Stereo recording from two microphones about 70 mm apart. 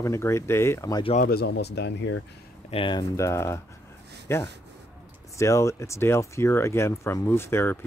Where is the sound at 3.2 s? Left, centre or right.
Left.